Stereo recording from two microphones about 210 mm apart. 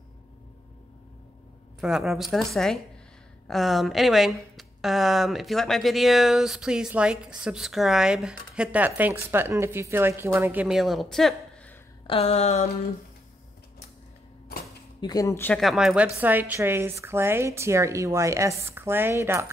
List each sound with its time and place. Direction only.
1.8 s a woman's voice: centre (ahead or behind)
12.1 s a sound: 30° left (ahead or behind)
15.0 s a woman's voice: 20° left (ahead or behind); by 19.4 s 10° right (ahead or behind)